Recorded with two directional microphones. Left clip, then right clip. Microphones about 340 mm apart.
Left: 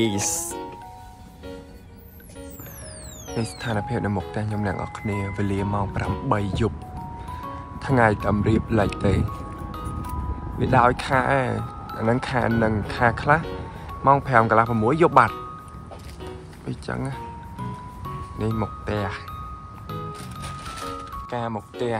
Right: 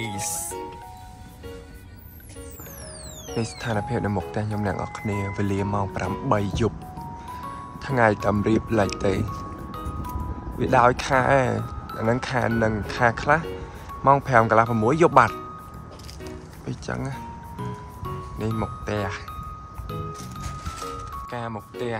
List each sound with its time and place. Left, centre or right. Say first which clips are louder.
0.0 s speech: left 6 dB; left
3.3 s speech: even; centre
10.6 s speech: even; centre
16.6 s speech: left 1 dB; centre
18.4 s speech: left 1 dB; centre
21.3 s speech: left 6 dB; centre